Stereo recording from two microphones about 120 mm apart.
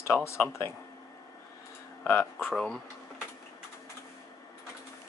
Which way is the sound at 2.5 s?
5° left (ahead or behind).